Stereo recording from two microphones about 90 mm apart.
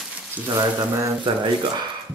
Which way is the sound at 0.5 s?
50° right (ahead or behind).